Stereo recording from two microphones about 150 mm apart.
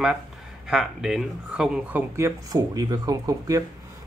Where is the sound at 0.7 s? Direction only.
5° right (ahead or behind).